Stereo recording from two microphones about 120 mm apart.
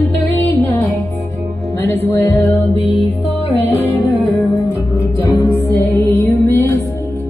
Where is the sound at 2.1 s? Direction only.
20° left (ahead or behind).